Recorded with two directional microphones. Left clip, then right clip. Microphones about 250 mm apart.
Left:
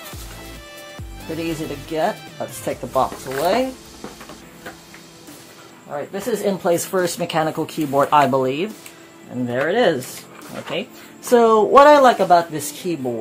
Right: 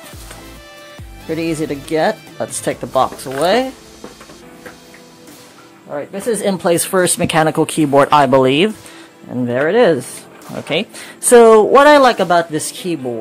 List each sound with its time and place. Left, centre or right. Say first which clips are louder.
1.4 s speech: right 6 dB; right
5.9 s speech: right 4 dB; right
9.5 s speech: right 5 dB; right